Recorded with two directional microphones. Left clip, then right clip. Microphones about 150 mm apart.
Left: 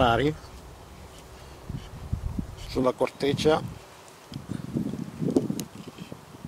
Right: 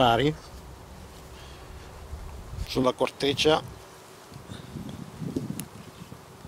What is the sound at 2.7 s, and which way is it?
Speech, 10° right (ahead or behind).